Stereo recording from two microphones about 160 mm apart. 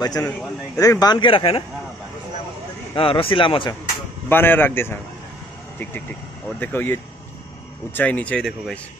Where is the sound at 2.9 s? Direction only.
35° left (ahead or behind).